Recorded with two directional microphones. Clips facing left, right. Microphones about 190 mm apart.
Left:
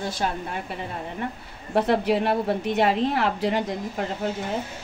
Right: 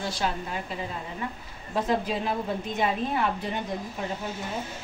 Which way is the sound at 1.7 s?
70° left (ahead or behind).